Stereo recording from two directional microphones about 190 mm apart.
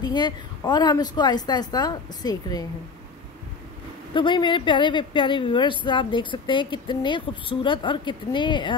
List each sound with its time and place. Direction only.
0.0 s speech: 20° left (ahead or behind)
4.1 s speech: 25° left (ahead or behind)